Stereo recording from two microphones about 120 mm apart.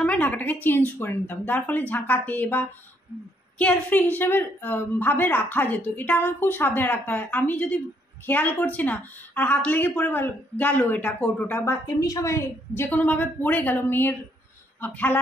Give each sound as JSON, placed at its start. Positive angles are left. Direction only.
{"t": 0.0, "sound": "a woman's voice", "side_deg": 10}
{"t": 12.0, "sound": "a woman's voice", "side_deg": 25}